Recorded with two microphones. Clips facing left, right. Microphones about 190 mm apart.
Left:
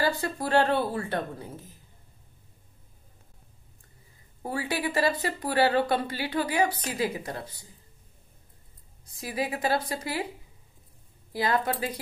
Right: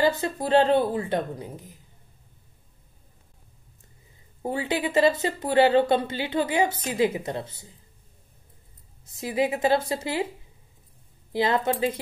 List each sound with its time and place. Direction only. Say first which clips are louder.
0.0 s speech: right 4 dB; 20° right (ahead or behind)
4.4 s speech: right 4 dB; 20° right (ahead or behind)
9.0 s speech: right 6 dB; 25° right (ahead or behind)
11.3 s speech: right 3 dB; 25° right (ahead or behind)